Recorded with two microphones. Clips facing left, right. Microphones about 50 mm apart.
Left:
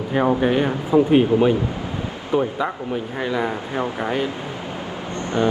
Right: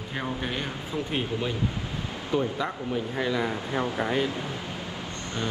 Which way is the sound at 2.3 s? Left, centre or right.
Centre.